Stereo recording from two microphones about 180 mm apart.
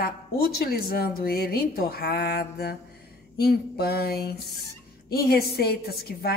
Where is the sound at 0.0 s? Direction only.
55° left (ahead or behind).